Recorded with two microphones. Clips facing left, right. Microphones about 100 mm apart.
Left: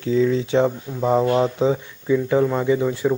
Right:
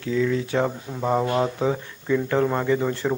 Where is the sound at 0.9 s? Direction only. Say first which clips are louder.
Left 2 dB; 5° right (ahead or behind).